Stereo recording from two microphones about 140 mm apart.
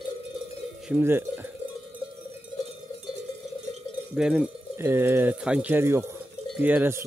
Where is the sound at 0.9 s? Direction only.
15° right (ahead or behind).